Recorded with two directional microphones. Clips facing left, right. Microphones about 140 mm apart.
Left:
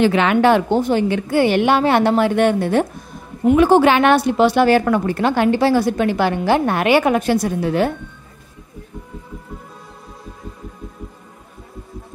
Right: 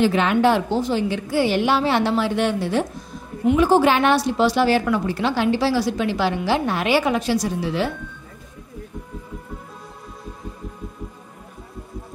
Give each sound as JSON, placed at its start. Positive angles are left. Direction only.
{"t": 0.0, "sound": "a woman's voice", "side_deg": 70}